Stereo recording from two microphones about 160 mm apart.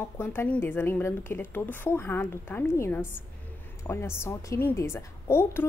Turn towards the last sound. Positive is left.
turn(degrees=15)  # may be behind; listen again after turning